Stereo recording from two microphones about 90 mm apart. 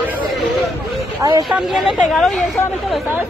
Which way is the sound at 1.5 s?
5° right (ahead or behind).